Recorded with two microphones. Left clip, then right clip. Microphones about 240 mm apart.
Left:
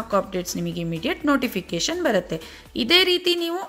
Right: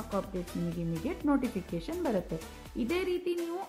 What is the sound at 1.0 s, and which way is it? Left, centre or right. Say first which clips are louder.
Speech: left 9 dB; centre.